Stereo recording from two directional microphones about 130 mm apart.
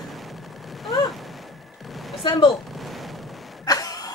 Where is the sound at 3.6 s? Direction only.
30° left (ahead or behind).